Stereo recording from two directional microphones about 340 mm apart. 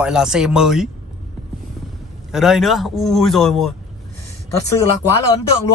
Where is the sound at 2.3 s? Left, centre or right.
Centre.